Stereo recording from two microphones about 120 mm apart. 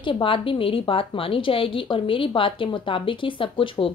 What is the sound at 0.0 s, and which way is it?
A woman's voice, 45° left (ahead or behind).